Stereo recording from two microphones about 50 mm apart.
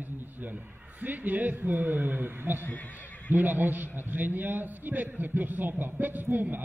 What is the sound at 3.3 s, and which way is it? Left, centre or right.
A man's voice, right.